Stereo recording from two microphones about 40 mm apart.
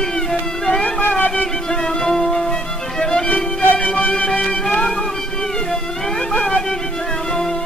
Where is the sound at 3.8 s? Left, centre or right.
Left.